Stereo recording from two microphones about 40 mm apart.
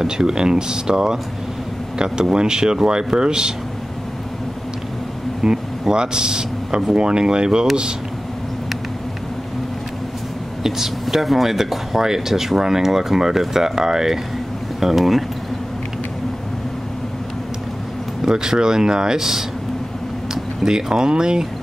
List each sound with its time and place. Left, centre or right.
0.0 s speech: centre
5.4 s a man's voice: centre
10.6 s speech: centre
18.2 s speech: centre
20.6 s speech: centre